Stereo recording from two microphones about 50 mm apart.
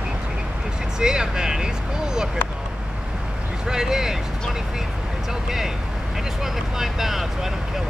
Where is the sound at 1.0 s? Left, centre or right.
Centre.